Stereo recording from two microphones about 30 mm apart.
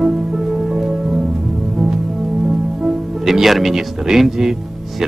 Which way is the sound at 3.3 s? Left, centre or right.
Centre.